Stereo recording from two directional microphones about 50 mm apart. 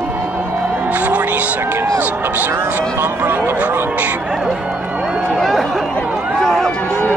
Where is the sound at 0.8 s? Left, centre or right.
Right.